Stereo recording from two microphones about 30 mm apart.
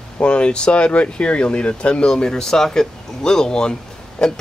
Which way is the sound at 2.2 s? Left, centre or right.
Left.